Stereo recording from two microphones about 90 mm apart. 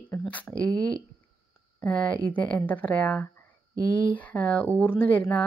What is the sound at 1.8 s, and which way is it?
A woman's voice, 15° left (ahead or behind).